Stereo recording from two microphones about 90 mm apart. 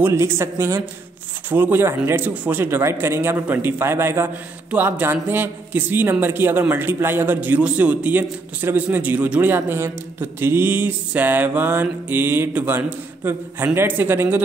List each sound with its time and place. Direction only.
0.0 s a man's voice: 30° right (ahead or behind)